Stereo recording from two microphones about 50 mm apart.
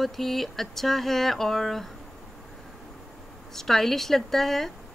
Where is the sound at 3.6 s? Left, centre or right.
Centre.